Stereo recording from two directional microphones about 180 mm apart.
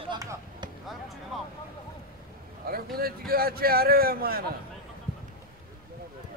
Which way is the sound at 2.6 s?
55° right (ahead or behind).